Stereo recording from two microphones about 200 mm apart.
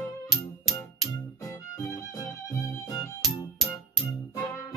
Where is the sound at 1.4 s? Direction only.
15° left (ahead or behind).